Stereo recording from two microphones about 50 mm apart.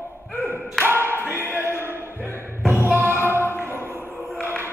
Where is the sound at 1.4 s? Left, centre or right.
Right.